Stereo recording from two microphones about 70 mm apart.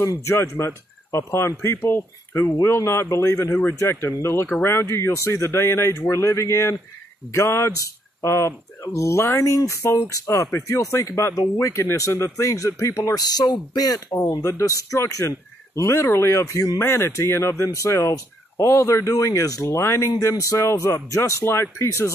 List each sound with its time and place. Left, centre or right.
0.0 s speech: left
13.2 s speech: left
14.6 s speech: left
15.0 s speech: left
19.6 s speech: left